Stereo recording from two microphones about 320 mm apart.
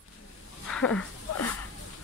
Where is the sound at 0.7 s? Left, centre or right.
Centre.